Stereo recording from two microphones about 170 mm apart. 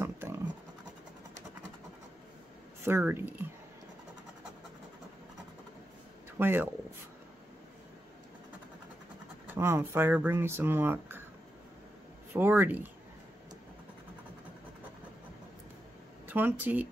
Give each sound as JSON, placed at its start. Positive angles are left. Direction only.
{"t": 0.0, "sound": "scratch", "side_deg": -15}
{"t": 2.8, "sound": "speech", "side_deg": -15}
{"t": 6.3, "sound": "speech", "side_deg": -15}
{"t": 9.5, "sound": "speech", "side_deg": -15}
{"t": 12.4, "sound": "speech", "side_deg": -10}
{"t": 16.3, "sound": "speech", "side_deg": -10}